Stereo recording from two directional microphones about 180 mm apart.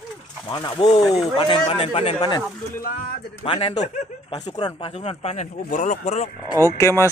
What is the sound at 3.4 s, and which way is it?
Speech, 30° left (ahead or behind).